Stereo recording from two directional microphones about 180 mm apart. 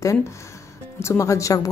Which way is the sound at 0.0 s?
15° left (ahead or behind).